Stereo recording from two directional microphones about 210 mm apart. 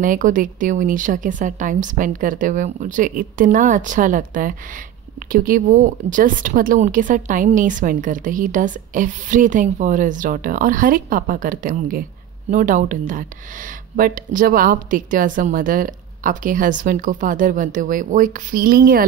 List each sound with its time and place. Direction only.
0.0 s a woman's voice: 40° right (ahead or behind)